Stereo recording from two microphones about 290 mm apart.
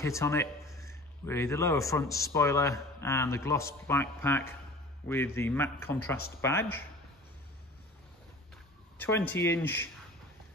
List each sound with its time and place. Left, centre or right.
0.0 s a man's voice: centre
8.9 s a man's voice: centre